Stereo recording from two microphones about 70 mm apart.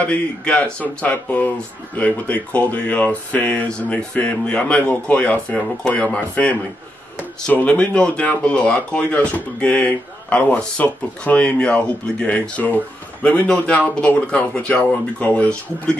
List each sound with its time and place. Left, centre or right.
0.0 s speech: left